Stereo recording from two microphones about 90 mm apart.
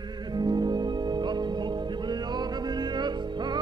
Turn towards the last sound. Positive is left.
turn(degrees=-55)  # may be behind; listen again after turning